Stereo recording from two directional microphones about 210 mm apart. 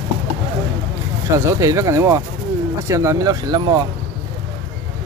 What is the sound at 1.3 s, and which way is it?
Speech, 15° right (ahead or behind).